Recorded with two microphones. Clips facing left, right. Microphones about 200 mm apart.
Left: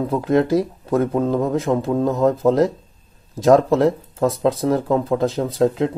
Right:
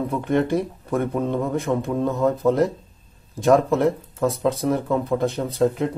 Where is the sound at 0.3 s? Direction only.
40° left (ahead or behind).